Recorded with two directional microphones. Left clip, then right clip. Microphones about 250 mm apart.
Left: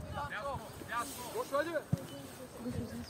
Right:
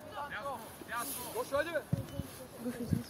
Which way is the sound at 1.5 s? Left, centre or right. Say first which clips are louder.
Right 1 dB; right.